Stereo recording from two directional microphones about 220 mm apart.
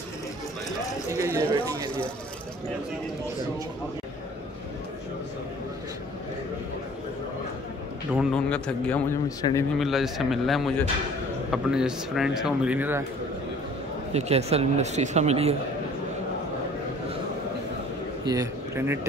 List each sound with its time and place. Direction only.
1.1 s a sound: 15° right (ahead or behind)
8.1 s speech: centre (ahead or behind)
9.8 s speech: centre (ahead or behind)
14.1 s speech: 30° right (ahead or behind)
18.2 s a man's voice: 15° right (ahead or behind)